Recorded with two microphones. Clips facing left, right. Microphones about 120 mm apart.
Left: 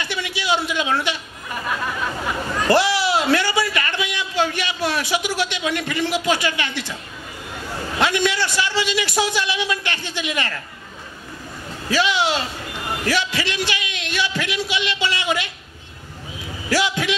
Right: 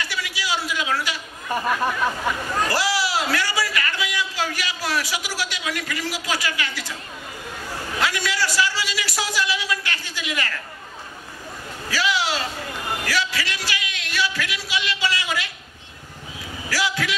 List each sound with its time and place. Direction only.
0.0 s a sound: 25° left (ahead or behind)
2.7 s speech: 25° left (ahead or behind)
8.0 s a man's voice: 25° left (ahead or behind)
11.9 s a man's voice: 25° left (ahead or behind)
16.6 s a man's voice: 25° left (ahead or behind)